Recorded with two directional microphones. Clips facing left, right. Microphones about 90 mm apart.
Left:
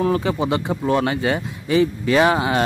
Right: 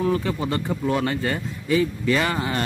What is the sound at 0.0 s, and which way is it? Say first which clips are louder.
Speech: left 3 dB; 75° left (ahead or behind).